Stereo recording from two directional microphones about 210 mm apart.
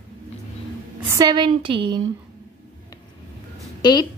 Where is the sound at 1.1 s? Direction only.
20° right (ahead or behind).